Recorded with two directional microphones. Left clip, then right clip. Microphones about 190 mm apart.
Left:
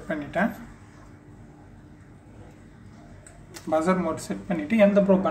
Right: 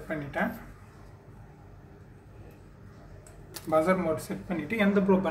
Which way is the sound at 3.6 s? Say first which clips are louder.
Left 1 dB; 10° left (ahead or behind).